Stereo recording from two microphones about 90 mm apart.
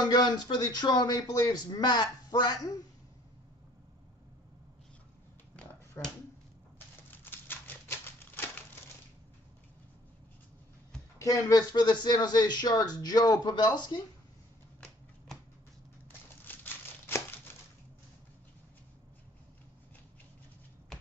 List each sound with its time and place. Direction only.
0.0 s speech: 50° left (ahead or behind)
6.0 s speech: 25° left (ahead or behind)
7.1 s typewriter: 20° left (ahead or behind)
11.1 s speech: 35° left (ahead or behind)
11.7 s speech: 55° left (ahead or behind)
16.4 s a sound: 25° left (ahead or behind)